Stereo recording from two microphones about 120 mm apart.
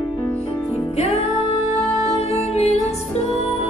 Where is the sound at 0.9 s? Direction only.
65° left (ahead or behind).